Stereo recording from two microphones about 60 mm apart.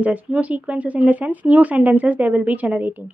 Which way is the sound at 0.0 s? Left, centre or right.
Right.